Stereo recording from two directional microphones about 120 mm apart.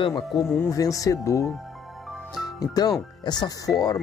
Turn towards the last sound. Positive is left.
turn(degrees=30)  # may be behind; listen again after turning